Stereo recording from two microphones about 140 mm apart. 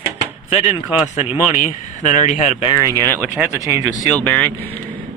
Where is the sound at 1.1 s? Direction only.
55° left (ahead or behind).